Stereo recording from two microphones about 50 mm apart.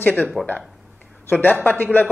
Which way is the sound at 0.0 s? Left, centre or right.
Left.